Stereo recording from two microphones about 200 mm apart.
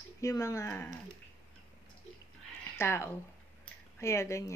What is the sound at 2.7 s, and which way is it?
Speech, 15° left (ahead or behind).